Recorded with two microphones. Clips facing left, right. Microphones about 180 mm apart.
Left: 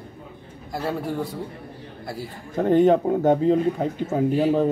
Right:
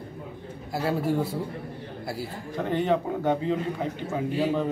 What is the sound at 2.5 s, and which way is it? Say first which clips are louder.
A man's voice: left 8 dB; 45° left (ahead or behind).